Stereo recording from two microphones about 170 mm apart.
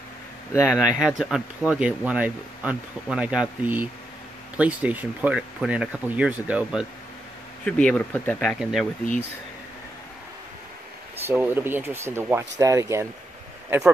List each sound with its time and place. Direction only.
0.5 s speech: 15° left (ahead or behind)
0.7 s speech: 5° right (ahead or behind)
7.6 s speech: 5° left (ahead or behind)
11.2 s speech: 10° right (ahead or behind)